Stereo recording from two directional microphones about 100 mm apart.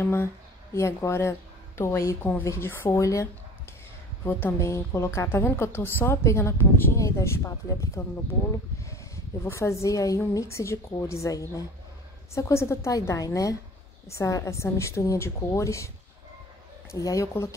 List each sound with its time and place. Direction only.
0.0 s a woman's voice: 25° left (ahead or behind)
4.2 s a woman's voice: 20° left (ahead or behind)
16.9 s a woman's voice: 30° left (ahead or behind)